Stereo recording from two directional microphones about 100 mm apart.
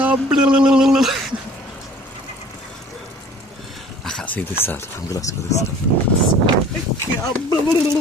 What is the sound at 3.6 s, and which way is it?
Dog, 5° left (ahead or behind).